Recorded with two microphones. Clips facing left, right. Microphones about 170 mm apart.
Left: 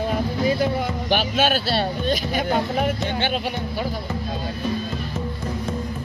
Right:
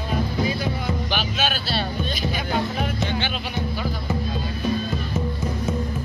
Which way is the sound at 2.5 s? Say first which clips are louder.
Left 4 dB; 50° left (ahead or behind).